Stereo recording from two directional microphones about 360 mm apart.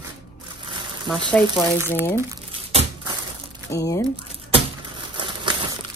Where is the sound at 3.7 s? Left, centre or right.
Centre.